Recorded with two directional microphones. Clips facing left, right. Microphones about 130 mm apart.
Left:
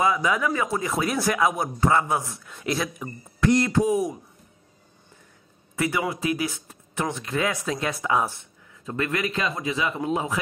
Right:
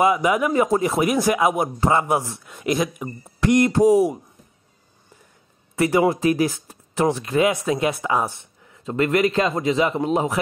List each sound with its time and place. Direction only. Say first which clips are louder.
0.0 s speech: right 4 dB; 20° right (ahead or behind)
1.0 s speech: right 4 dB; 15° right (ahead or behind)
3.7 s speech: right 7 dB; 35° right (ahead or behind)
5.8 s speech: right 8 dB; 35° right (ahead or behind)
7.2 s speech: right 7 dB; 20° right (ahead or behind)
8.8 s speech: right 8 dB; 30° right (ahead or behind)